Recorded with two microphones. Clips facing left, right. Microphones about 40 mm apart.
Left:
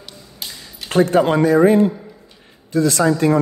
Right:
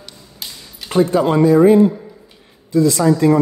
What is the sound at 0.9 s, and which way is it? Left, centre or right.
Speech, left.